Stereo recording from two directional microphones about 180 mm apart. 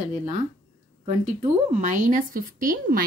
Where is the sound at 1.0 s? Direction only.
40° right (ahead or behind).